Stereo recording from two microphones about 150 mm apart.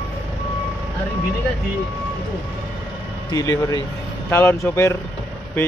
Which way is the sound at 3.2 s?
20° left (ahead or behind).